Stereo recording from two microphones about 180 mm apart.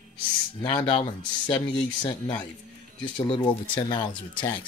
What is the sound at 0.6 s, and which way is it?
Speech, 30° left (ahead or behind).